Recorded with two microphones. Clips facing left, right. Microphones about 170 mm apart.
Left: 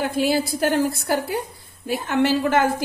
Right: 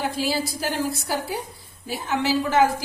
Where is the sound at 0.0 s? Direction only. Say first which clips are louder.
Left 4 dB; 55° left (ahead or behind).